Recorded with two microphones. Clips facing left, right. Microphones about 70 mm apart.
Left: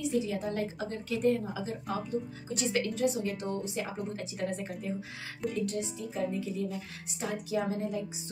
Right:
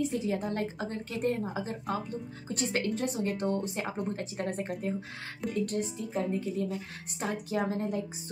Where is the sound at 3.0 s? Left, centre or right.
Right.